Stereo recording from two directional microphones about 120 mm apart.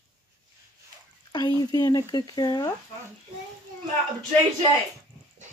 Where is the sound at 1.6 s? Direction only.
35° left (ahead or behind).